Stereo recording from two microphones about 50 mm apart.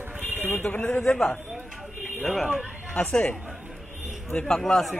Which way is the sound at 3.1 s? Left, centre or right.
Left.